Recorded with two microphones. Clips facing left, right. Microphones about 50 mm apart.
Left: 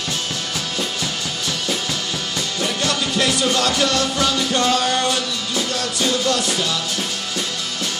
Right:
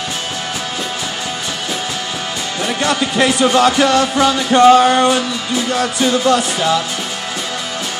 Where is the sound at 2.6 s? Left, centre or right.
Right.